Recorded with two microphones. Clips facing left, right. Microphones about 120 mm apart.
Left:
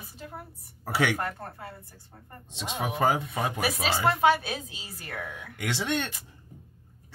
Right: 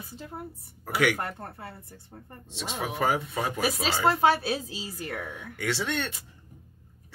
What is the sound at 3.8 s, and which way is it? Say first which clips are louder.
A woman's voice: even; 30° right (ahead or behind).